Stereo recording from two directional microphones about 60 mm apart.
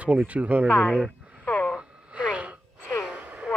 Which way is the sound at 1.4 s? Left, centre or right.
Left.